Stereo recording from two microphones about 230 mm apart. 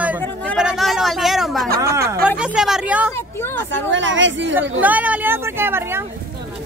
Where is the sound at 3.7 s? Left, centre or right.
Right.